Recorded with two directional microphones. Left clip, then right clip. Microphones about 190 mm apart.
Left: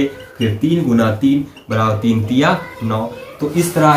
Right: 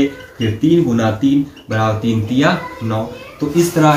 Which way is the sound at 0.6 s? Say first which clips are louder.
Right 2 dB; 30° left (ahead or behind).